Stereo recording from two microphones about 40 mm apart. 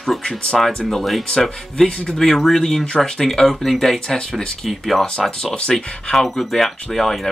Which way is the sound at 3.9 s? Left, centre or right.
Centre.